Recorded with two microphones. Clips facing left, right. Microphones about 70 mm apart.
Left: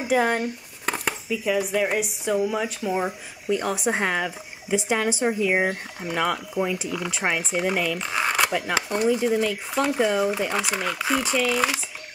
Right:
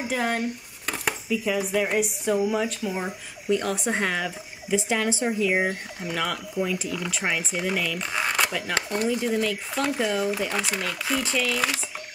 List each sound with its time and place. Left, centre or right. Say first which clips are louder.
0.1 s speech: left 6 dB; centre
1.3 s speech: left 1 dB; centre
8.5 s speech: left 3 dB; left